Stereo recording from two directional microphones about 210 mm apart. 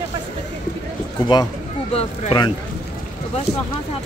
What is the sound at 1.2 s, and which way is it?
Speech, 20° left (ahead or behind).